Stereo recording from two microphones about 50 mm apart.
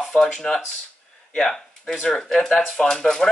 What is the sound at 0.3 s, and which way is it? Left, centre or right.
Speech, centre.